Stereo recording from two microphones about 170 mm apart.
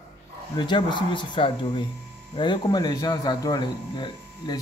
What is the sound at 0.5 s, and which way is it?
Speech, 25° left (ahead or behind).